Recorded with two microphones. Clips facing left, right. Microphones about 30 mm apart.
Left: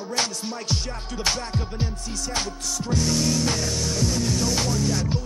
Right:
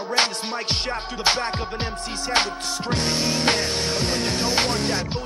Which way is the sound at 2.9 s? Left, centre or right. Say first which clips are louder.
Even; right.